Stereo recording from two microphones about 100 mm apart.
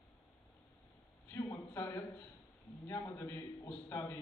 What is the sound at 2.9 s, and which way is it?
Speech, 40° left (ahead or behind).